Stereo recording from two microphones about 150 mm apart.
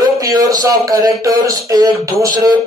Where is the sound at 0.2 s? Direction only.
25° right (ahead or behind).